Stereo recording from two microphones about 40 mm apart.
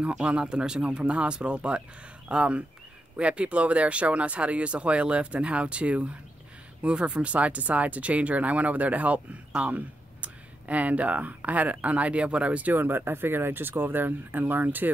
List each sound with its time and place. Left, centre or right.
0.0 s speech: right
12.7 s speech: right